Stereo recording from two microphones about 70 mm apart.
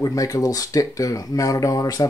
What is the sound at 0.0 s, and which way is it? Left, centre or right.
Speech, left.